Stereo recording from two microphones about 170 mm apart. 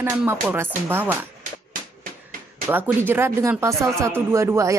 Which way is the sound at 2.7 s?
10° right (ahead or behind).